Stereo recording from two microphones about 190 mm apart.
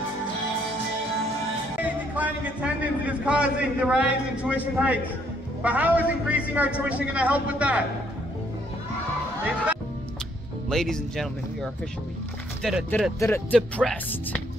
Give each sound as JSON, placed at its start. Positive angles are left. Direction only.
{"t": 1.8, "sound": "a man's voice", "side_deg": -10}
{"t": 10.7, "sound": "speech", "side_deg": 0}